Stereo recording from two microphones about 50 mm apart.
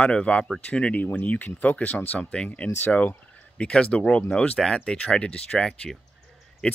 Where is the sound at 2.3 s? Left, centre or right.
Left.